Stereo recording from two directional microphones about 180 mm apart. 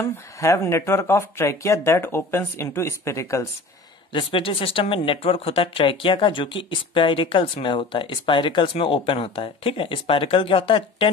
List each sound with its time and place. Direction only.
0.0 s speech: 15° left (ahead or behind)
4.1 s a woman's voice: 30° left (ahead or behind)